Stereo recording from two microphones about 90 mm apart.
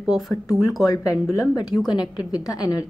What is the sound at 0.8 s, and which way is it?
Speech, 35° left (ahead or behind).